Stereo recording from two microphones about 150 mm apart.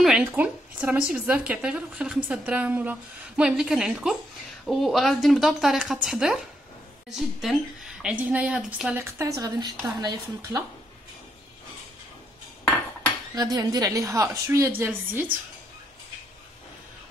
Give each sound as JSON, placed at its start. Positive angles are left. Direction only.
{"t": 0.2, "sound": "a woman's voice", "side_deg": -10}
{"t": 9.0, "sound": "a woman's voice", "side_deg": -25}
{"t": 13.3, "sound": "a woman's voice", "side_deg": -25}